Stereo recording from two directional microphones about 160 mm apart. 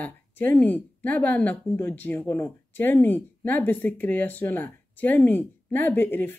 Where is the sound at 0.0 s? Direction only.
10° left (ahead or behind).